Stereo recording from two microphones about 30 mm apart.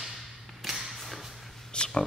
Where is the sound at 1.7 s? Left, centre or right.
Left.